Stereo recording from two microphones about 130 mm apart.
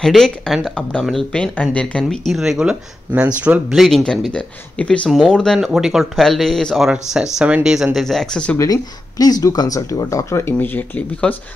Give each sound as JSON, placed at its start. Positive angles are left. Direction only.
{"t": 0.0, "sound": "speech", "side_deg": 5}
{"t": 3.7, "sound": "speech", "side_deg": 0}
{"t": 9.2, "sound": "speech", "side_deg": 30}